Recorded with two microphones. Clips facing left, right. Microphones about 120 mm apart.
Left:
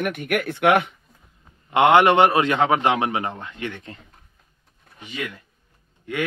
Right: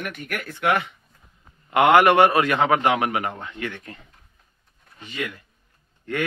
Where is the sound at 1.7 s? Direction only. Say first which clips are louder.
Even; 20° left (ahead or behind).